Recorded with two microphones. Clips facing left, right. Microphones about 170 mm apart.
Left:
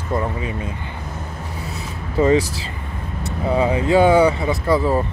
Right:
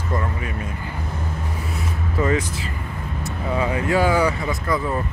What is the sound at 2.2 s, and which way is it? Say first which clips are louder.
Speech: left 6 dB; 30° left (ahead or behind).